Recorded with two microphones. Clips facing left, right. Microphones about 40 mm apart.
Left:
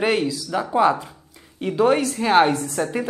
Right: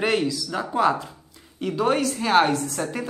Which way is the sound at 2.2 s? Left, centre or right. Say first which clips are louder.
Left 3 dB; centre.